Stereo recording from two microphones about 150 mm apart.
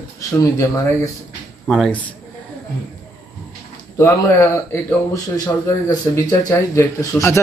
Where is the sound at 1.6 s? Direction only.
Centre (ahead or behind).